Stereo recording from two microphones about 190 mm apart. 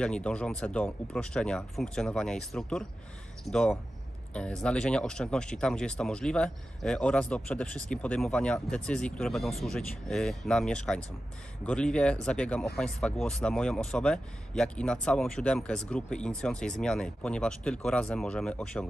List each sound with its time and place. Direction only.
0.0 s speech: 5° left (ahead or behind)